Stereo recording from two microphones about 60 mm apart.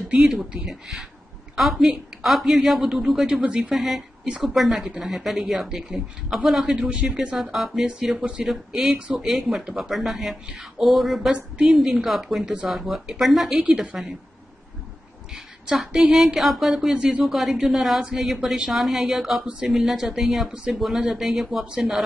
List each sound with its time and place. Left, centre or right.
0.1 s a woman's voice: centre
0.7 s speech: centre
3.3 s a woman's voice: centre
3.7 s a woman's voice: centre
8.9 s speech: right
9.2 s speech: centre
11.3 s a woman's voice: centre
15.3 s a woman's voice: centre